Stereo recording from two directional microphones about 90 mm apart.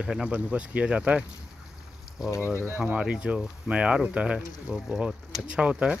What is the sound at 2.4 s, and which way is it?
Speech, 20° right (ahead or behind).